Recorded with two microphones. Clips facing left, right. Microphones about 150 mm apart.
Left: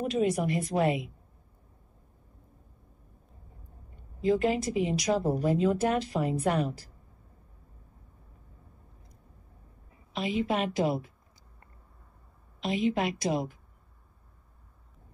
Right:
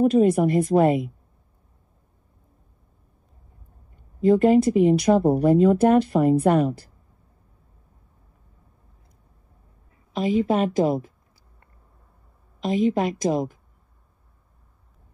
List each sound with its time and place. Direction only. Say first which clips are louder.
0.0 s speech: right 10 dB; 45° right (ahead or behind)
4.2 s speech: right 10 dB; 50° right (ahead or behind)
10.1 s speech: right 8 dB; 45° right (ahead or behind)
12.5 s speech: right 6 dB; 45° right (ahead or behind)